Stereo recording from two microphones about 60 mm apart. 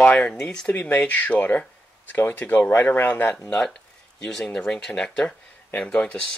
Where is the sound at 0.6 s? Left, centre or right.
Left.